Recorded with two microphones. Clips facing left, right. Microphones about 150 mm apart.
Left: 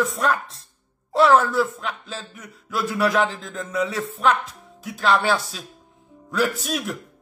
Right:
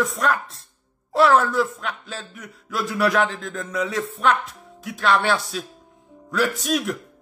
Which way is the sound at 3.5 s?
25° left (ahead or behind).